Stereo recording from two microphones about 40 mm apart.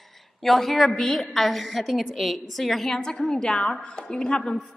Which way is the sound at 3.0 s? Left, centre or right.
Centre.